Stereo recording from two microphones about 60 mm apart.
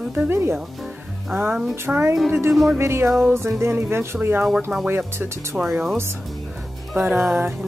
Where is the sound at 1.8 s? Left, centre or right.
Right.